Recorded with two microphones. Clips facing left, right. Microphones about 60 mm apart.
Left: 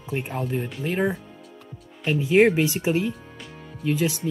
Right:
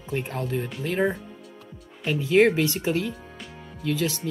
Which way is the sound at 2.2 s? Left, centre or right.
Left.